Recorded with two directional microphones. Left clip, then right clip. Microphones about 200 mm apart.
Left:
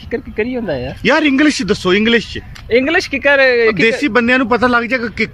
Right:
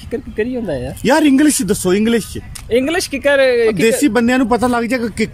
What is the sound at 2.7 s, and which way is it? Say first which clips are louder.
Speech: left 3 dB; centre (ahead or behind).